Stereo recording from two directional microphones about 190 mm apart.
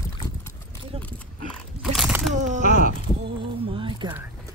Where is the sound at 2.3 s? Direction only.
40° right (ahead or behind).